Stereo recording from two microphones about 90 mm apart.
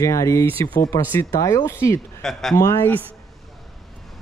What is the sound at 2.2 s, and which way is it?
Speech, 5° left (ahead or behind).